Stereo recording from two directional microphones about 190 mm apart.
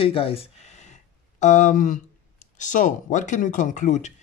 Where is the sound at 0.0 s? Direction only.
30° left (ahead or behind).